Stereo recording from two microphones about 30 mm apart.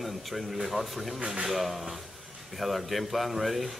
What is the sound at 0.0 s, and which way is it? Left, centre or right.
Speech, centre.